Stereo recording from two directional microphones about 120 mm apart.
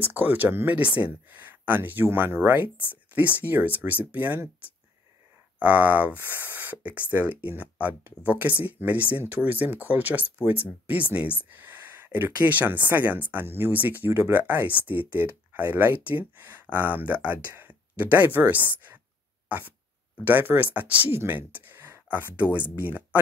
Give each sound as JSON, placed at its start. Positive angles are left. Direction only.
{"t": 0.0, "sound": "speech", "side_deg": -15}
{"t": 20.2, "sound": "speech", "side_deg": -15}